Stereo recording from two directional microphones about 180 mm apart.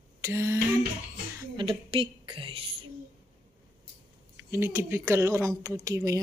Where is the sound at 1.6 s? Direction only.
30° right (ahead or behind).